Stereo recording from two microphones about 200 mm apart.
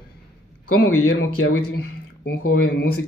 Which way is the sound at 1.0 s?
75° left (ahead or behind).